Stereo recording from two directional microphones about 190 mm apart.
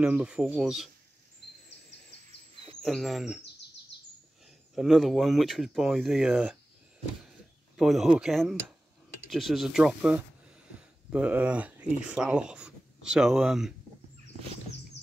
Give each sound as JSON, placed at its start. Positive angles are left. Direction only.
{"t": 0.0, "sound": "speech", "side_deg": -5}
{"t": 2.5, "sound": "a sound", "side_deg": -30}
{"t": 2.8, "sound": "speech", "side_deg": 0}
{"t": 4.7, "sound": "speech", "side_deg": 0}
{"t": 7.7, "sound": "speech", "side_deg": 0}